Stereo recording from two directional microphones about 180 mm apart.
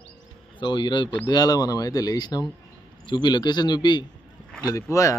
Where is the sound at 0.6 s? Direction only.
25° left (ahead or behind).